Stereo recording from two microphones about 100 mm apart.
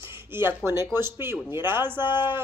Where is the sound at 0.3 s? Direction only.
25° right (ahead or behind).